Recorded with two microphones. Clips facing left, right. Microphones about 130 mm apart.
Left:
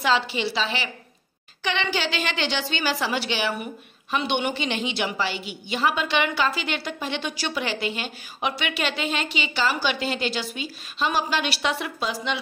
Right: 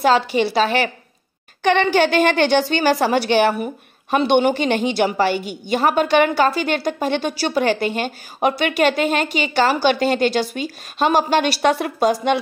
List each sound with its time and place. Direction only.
0.0 s a woman's voice: 45° right (ahead or behind)